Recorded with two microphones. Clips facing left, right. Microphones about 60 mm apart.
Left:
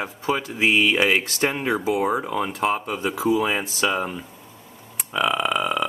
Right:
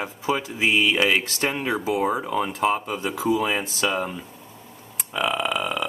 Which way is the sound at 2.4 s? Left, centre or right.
Centre.